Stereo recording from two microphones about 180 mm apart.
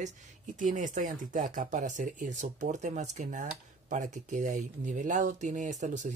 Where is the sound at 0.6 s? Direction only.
45° right (ahead or behind).